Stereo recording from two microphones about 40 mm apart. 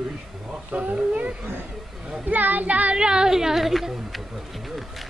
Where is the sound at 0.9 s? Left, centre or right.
Right.